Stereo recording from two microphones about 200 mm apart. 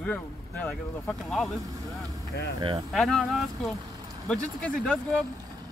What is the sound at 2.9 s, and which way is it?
Speech, centre (ahead or behind).